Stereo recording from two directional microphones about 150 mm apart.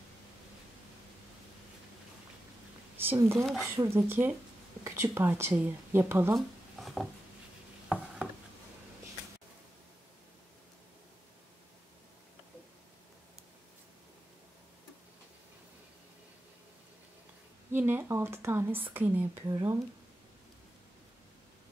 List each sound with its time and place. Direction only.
3.0 s a woman's voice: 15° right (ahead or behind)
6.3 s a sound: centre (ahead or behind)
17.7 s a woman's voice: 15° right (ahead or behind)
19.4 s speech: 25° right (ahead or behind)